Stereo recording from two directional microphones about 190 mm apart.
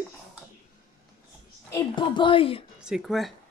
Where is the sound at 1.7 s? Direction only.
25° left (ahead or behind).